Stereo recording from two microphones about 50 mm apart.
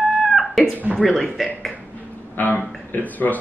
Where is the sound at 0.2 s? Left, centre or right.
Centre.